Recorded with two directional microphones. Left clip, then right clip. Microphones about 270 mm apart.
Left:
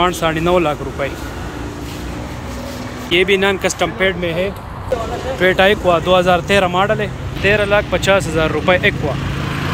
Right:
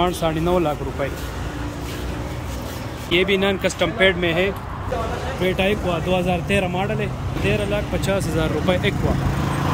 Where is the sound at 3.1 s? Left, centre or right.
Centre.